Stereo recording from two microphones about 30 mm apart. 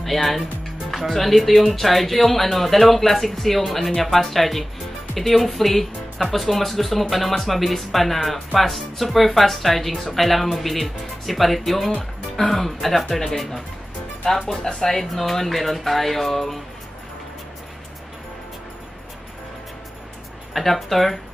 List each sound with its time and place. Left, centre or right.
0.0 s speech: centre
14.4 s speech: left
14.9 s speech: centre
20.5 s speech: centre